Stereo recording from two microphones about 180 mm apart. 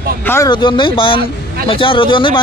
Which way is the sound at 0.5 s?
25° left (ahead or behind).